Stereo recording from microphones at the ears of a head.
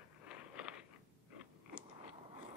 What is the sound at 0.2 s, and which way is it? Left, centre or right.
Biting, left.